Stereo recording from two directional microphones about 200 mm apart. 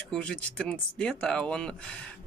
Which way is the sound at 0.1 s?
5° left (ahead or behind).